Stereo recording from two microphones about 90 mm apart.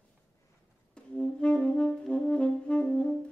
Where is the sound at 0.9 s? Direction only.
10° left (ahead or behind).